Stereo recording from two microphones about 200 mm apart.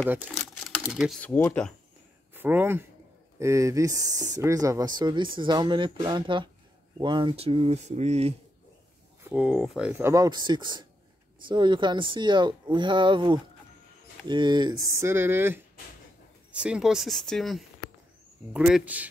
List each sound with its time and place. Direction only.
0.8 s speech: centre (ahead or behind)
2.3 s speech: 10° right (ahead or behind); by 8.4 s 35° right (ahead or behind)
9.3 s speech: 5° right (ahead or behind)